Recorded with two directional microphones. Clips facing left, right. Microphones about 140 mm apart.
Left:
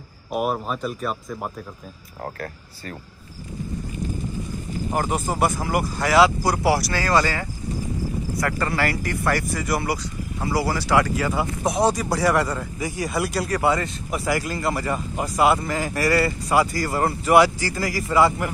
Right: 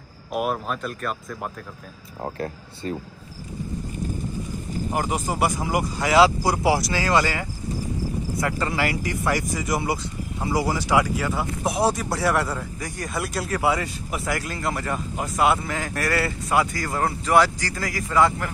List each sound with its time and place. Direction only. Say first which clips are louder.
0.3 s a man's voice: left 1 dB; centre (ahead or behind)
2.2 s speech: right 3 dB; 25° right (ahead or behind)
4.9 s speech: left 2 dB; 10° right (ahead or behind)
11.1 s a man's voice: left 2 dB; centre (ahead or behind)